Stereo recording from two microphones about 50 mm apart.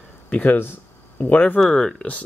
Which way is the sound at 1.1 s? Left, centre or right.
Left.